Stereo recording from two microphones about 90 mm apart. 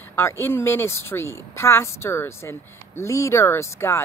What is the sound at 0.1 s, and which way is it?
Speech, 25° left (ahead or behind).